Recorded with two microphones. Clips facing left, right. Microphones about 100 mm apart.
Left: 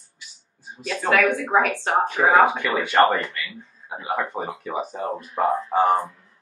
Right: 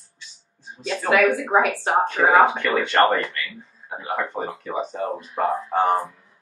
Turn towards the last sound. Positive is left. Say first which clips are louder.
# left 1 dB
turn(degrees=0)  # may be behind; listen again after turning